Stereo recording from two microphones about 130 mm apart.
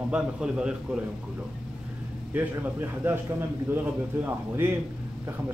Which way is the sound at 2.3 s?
15° right (ahead or behind).